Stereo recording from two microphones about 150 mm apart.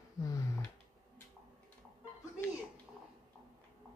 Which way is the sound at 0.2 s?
20° left (ahead or behind).